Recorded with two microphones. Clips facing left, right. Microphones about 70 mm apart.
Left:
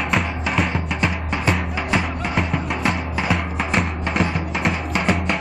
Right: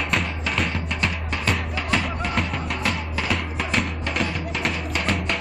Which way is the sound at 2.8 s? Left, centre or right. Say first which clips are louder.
Left 4 dB; centre.